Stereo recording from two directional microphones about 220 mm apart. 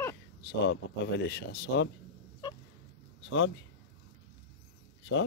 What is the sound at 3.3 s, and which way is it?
Speech, 60° left (ahead or behind).